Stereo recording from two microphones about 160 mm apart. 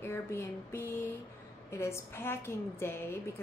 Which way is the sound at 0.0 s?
15° left (ahead or behind).